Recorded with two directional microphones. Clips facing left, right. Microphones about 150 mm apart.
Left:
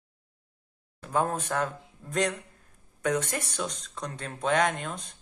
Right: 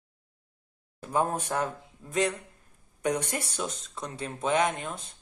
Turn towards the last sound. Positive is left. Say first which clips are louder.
# even
turn(degrees=-5)  # may be behind; listen again after turning